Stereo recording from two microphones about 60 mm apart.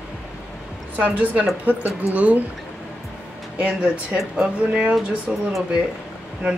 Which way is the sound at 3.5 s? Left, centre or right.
Right.